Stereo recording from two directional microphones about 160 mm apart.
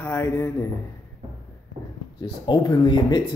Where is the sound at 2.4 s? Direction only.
30° left (ahead or behind).